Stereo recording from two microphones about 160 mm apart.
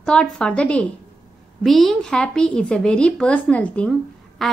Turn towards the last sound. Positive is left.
turn(degrees=0)  # may be behind; listen again after turning